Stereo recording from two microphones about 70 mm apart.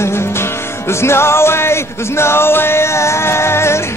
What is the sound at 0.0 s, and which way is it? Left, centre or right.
Music, left.